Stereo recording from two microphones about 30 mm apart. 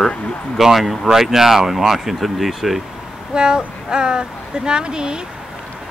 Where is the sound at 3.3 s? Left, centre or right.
Right.